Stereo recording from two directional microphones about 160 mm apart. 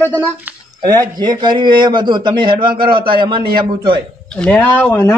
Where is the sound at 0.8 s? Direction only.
25° right (ahead or behind).